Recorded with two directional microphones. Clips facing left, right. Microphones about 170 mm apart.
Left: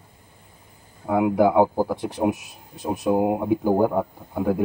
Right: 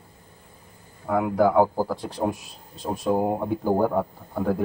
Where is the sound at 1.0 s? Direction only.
15° left (ahead or behind).